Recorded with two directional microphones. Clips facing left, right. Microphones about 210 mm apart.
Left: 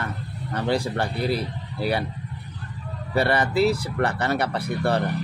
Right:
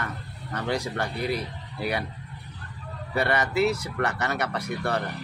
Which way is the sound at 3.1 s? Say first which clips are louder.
Left 3 dB; 30° left (ahead or behind).